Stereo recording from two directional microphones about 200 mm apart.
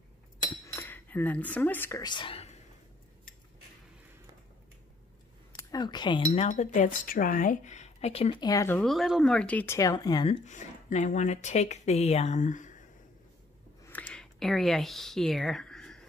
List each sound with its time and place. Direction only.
0.7 s speech: 10° left (ahead or behind); by 2.5 s 25° left (ahead or behind)
5.6 s speech: 20° left (ahead or behind); by 12.8 s 40° left (ahead or behind)
13.8 s a sound: 5° left (ahead or behind)